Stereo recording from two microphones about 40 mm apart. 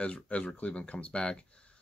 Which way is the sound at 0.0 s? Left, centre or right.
Left.